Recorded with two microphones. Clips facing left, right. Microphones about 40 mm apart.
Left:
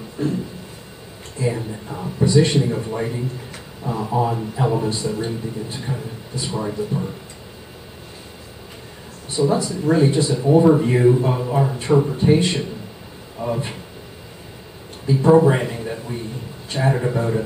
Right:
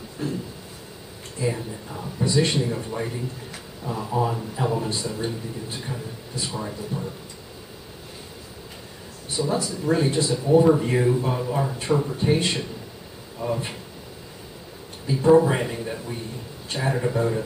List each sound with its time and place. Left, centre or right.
0.2 s speech: centre
1.4 s a man's voice: centre
2.2 s a man's voice: centre
9.4 s a man's voice: centre
13.4 s a man's voice: centre
15.0 s a man's voice: centre